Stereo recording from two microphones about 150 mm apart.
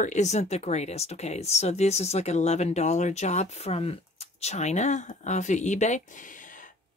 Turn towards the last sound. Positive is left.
turn(degrees=60)  # may be behind; listen again after turning